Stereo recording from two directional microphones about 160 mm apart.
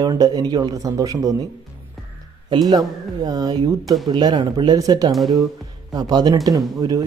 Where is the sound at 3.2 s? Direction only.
25° right (ahead or behind).